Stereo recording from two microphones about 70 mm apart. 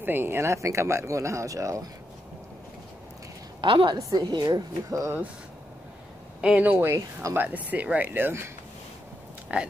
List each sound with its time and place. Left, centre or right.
0.0 s speech: right
3.7 s a woman's voice: right
6.6 s speech: right
6.9 s speech: right
7.3 s speech: right
9.5 s speech: centre